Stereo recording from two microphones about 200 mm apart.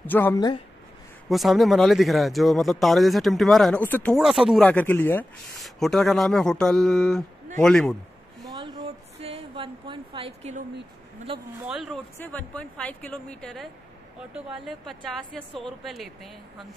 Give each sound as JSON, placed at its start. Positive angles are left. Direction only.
{"t": 0.0, "sound": "speech", "side_deg": 10}
{"t": 1.3, "sound": "speech", "side_deg": 0}
{"t": 8.5, "sound": "a sound", "side_deg": -20}
{"t": 11.3, "sound": "speech", "side_deg": -30}
{"t": 11.6, "sound": "speech", "side_deg": -5}